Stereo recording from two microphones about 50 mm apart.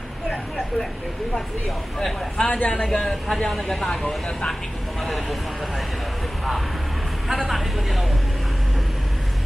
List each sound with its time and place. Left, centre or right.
2.0 s speech: centre
5.0 s speech: centre
7.2 s speech: centre